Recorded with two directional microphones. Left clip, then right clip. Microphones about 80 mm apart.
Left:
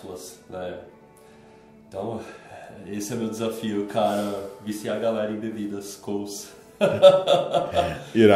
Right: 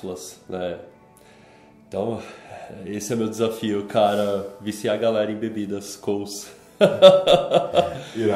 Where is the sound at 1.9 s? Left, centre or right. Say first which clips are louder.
Right 5 dB; right.